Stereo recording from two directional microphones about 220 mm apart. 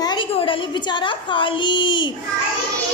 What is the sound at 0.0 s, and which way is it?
A woman's voice, 20° left (ahead or behind).